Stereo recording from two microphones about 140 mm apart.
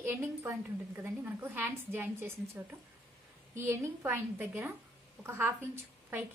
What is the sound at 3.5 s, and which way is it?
A woman's voice, 20° right (ahead or behind).